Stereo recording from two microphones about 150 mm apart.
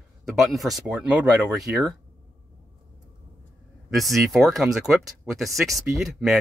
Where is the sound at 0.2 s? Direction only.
Centre (ahead or behind).